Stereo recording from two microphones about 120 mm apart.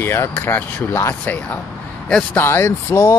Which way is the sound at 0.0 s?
20° left (ahead or behind).